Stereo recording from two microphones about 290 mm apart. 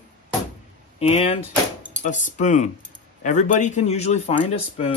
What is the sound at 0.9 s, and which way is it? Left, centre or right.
Speech, left.